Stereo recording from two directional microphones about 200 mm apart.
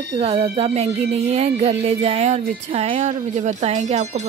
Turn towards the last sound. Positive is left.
turn(degrees=-35)  # may be behind; listen again after turning